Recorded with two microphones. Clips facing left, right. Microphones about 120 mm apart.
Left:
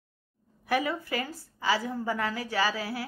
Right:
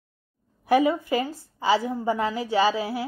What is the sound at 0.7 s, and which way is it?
A woman's voice, 25° right (ahead or behind).